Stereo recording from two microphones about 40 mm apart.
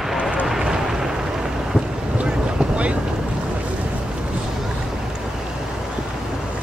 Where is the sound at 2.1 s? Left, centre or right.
Right.